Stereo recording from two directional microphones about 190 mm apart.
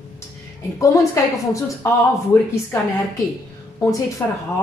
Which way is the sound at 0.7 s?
15° left (ahead or behind).